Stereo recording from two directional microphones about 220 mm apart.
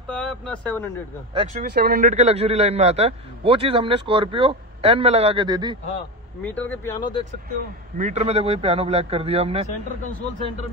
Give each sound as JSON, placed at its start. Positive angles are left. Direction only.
{"t": 0.1, "sound": "speech", "side_deg": 5}
{"t": 1.3, "sound": "a man's voice", "side_deg": -25}
{"t": 1.6, "sound": "a man's voice", "side_deg": -45}
{"t": 6.4, "sound": "speech", "side_deg": 5}
{"t": 8.0, "sound": "a man's voice", "side_deg": -30}